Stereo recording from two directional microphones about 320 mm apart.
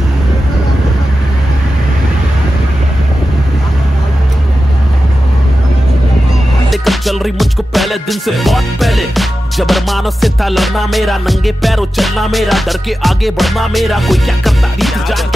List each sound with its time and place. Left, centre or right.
6.7 s music: centre